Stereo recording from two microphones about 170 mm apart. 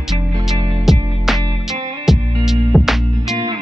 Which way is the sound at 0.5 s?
30° right (ahead or behind).